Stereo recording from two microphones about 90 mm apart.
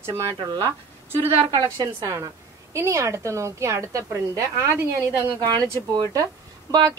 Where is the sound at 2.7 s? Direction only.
30° right (ahead or behind).